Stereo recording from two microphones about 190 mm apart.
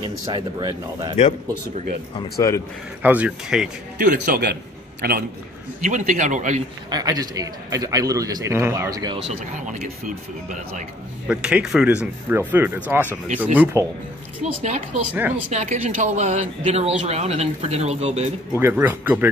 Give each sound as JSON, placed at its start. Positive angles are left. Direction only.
{"t": 0.1, "sound": "a man's voice", "side_deg": -20}
{"t": 2.3, "sound": "speech", "side_deg": 15}
{"t": 3.0, "sound": "speech", "side_deg": -10}
{"t": 4.0, "sound": "speech", "side_deg": -50}
{"t": 5.8, "sound": "speech", "side_deg": -40}
{"t": 6.9, "sound": "a man's voice", "side_deg": -20}
{"t": 9.7, "sound": "speech", "side_deg": -40}
{"t": 11.2, "sound": "a man's voice", "side_deg": -5}
{"t": 14.4, "sound": "speech", "side_deg": -35}
{"t": 15.1, "sound": "a man's voice", "side_deg": -10}
{"t": 15.5, "sound": "speech", "side_deg": -35}
{"t": 18.6, "sound": "a man's voice", "side_deg": -10}